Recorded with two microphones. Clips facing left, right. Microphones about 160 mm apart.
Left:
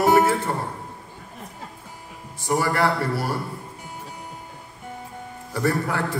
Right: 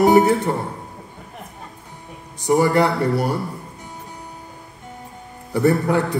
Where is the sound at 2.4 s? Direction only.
20° right (ahead or behind).